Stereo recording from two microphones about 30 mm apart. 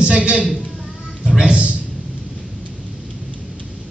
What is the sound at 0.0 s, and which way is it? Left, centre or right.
Speech, right.